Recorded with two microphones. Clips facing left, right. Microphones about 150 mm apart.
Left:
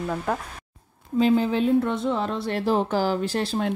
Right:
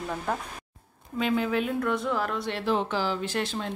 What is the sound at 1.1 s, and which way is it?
Speech, 35° left (ahead or behind).